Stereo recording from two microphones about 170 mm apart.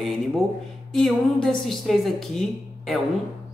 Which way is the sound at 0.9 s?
Centre (ahead or behind).